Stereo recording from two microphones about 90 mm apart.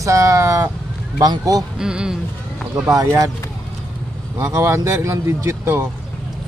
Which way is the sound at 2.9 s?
40° right (ahead or behind).